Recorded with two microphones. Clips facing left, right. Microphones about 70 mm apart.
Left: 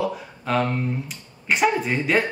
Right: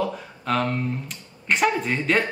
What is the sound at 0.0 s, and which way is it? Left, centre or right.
Speech, centre.